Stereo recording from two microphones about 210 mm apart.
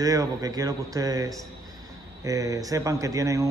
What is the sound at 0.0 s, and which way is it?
A man's voice, 15° right (ahead or behind).